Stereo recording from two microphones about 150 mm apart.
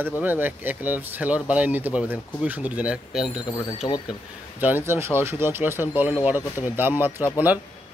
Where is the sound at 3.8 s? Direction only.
25° left (ahead or behind).